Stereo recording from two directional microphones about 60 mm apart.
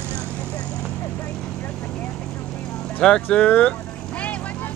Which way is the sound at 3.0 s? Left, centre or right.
Centre.